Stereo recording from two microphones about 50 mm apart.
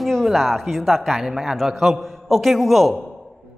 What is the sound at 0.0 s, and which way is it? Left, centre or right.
A man's voice, centre.